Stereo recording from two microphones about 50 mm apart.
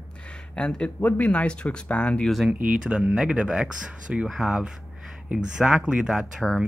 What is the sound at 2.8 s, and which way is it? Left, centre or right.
Speech, centre.